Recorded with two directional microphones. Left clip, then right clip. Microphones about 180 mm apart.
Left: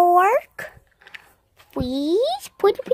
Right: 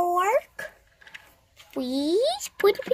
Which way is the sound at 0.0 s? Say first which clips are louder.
Left 7 dB; 45° left (ahead or behind).